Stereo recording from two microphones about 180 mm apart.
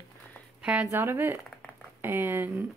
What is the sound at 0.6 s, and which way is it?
A woman's voice, 5° right (ahead or behind).